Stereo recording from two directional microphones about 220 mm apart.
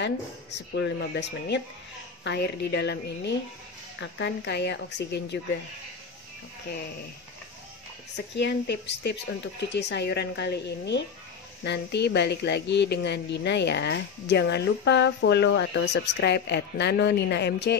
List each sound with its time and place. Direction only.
0.7 s a woman's voice: 50° left (ahead or behind)
8.4 s a woman's voice: 50° left (ahead or behind)